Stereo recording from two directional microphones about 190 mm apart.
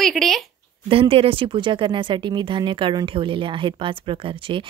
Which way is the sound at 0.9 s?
30° right (ahead or behind).